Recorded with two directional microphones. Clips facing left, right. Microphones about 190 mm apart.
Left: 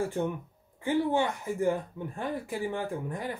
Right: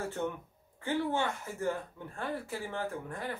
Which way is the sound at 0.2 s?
15° left (ahead or behind).